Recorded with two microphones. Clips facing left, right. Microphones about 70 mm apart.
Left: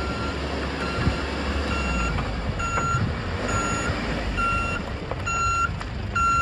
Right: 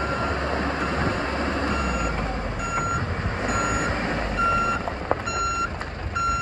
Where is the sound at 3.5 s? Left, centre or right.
Centre.